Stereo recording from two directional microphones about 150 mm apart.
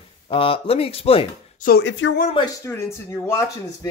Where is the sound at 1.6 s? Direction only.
80° left.